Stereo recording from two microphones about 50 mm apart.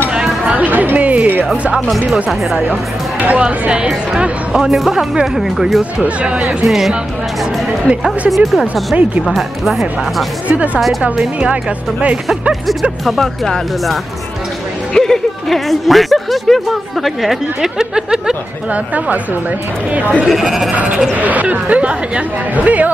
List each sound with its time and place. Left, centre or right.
0.7 s chatter: right
2.7 s speech: right
3.4 s speech: centre
6.0 s speech: right
6.6 s speech: centre
8.3 s speech: centre
10.5 s speech: right
10.8 s speech: centre
13.0 s speech: centre
15.0 s speech: centre
18.7 s speech: right
20.2 s speech: centre
20.7 s speech: right